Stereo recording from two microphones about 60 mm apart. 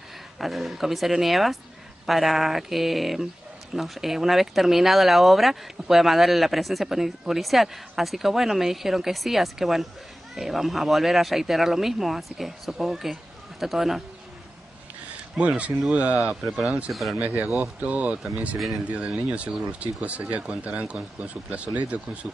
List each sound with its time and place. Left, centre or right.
0.4 s speech: centre
15.3 s speech: right